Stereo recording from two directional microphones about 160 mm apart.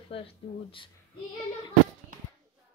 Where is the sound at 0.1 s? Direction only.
35° left (ahead or behind).